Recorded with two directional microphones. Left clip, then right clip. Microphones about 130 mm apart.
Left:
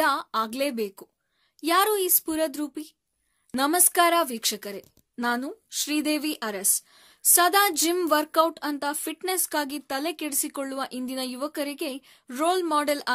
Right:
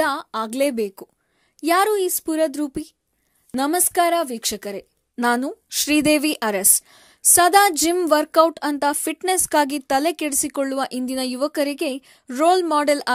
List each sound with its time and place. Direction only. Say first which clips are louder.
0.0 s speech: right 2 dB; 35° right (ahead or behind)
3.5 s a woman's voice: right 3 dB; 30° right (ahead or behind)
4.4 s speech: right 3 dB; 40° right (ahead or behind)